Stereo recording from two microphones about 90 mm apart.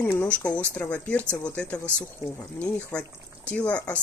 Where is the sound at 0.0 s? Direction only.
20° left (ahead or behind).